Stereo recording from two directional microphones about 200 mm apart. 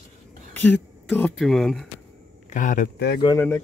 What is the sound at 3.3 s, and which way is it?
Speech, 10° left (ahead or behind).